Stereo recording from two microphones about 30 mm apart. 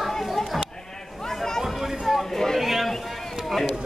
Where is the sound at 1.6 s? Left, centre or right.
Centre.